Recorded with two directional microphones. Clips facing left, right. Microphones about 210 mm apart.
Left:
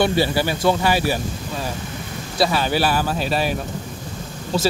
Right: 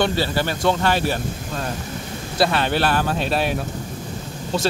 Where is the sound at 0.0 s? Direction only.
10° left (ahead or behind).